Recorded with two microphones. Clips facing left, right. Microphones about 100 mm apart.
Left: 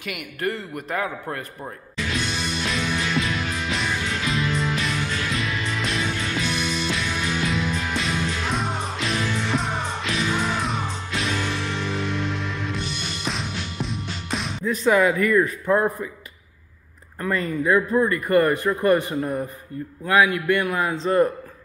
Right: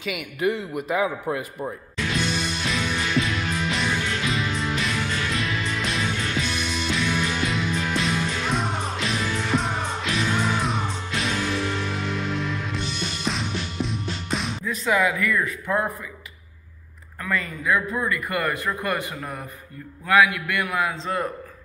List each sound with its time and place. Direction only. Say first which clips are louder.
0.0 s a sound: right 3 dB; centre (ahead or behind)
14.0 s music: right 1 dB; centre (ahead or behind)
14.9 s speech: left 4 dB; 40° left (ahead or behind)
17.2 s speech: left 4 dB; 35° left (ahead or behind)